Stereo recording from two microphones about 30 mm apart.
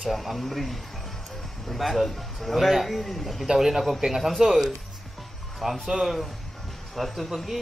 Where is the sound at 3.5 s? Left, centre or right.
Centre.